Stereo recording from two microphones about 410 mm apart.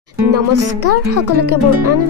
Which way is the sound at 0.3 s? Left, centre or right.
Right.